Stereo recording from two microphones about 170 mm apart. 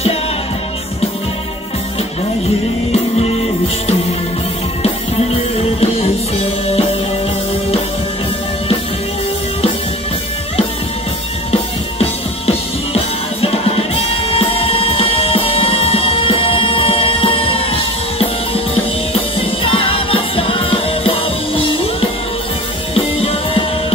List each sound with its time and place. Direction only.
2.9 s music: 35° left (ahead or behind)
11.5 s music: 35° left (ahead or behind)
19.1 s music: 35° left (ahead or behind)
22.9 s music: 35° left (ahead or behind)